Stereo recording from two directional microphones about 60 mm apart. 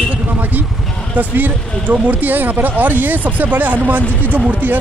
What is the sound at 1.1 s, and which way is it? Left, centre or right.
Speech, right.